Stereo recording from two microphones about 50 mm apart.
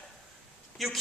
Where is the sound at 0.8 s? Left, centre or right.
Centre.